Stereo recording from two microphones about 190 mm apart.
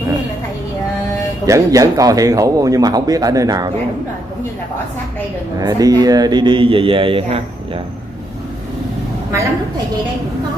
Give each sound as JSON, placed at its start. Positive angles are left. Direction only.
{"t": 1.4, "sound": "a man's voice", "side_deg": -15}
{"t": 5.6, "sound": "a man's voice", "side_deg": -20}